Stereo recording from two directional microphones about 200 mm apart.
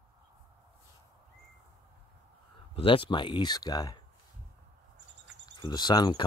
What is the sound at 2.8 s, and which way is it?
Speech, 25° left (ahead or behind).